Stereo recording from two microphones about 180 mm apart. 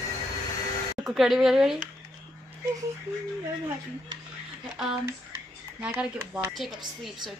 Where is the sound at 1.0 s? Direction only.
Centre (ahead or behind).